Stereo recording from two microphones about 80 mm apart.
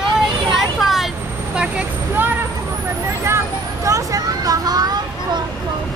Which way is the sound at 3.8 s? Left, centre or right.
Right.